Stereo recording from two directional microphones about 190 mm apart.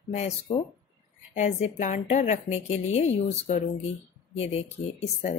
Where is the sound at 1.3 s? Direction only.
35° left (ahead or behind).